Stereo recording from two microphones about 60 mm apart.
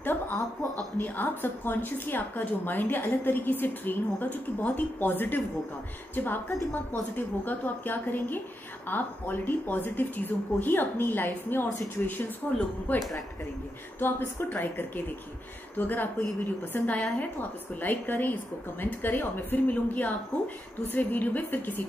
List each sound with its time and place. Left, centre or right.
0.0 s chuckle: left
0.9 s a woman's voice: left